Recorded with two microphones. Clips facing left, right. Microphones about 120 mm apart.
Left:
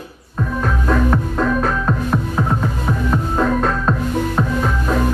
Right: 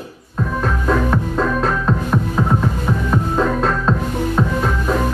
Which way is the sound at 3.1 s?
10° left (ahead or behind).